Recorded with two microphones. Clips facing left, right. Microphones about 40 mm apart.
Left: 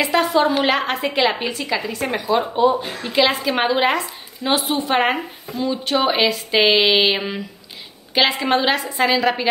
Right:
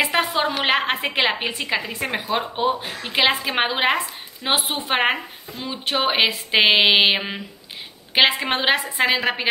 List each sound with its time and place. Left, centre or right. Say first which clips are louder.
0.0 s speech: left 4 dB; right